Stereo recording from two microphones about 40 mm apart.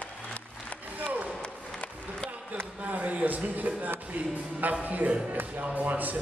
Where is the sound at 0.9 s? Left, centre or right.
Right.